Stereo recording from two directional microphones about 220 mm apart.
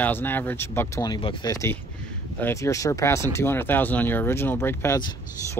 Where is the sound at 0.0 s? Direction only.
10° left (ahead or behind).